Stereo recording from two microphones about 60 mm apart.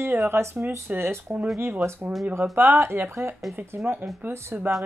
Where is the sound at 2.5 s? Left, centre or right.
Right.